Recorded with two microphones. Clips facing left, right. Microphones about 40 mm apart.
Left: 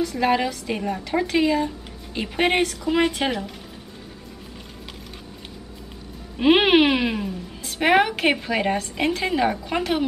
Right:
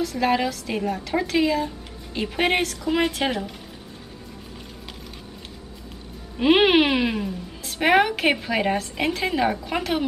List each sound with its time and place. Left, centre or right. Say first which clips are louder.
0.0 s speech: left 1 dB; centre
6.3 s speech: left 1 dB; centre